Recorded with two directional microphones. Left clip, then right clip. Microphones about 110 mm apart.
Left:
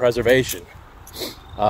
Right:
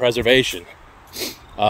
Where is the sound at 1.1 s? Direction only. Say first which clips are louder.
Right 2 dB; 25° right (ahead or behind).